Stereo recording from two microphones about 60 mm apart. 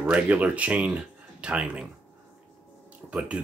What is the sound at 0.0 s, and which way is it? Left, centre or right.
Speech, right.